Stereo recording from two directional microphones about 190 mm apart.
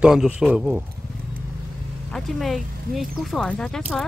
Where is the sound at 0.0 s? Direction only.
Centre (ahead or behind).